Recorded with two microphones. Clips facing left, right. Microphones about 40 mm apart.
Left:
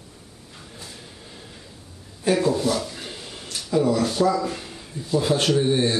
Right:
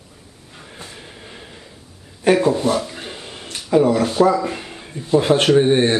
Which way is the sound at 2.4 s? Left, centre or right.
Right.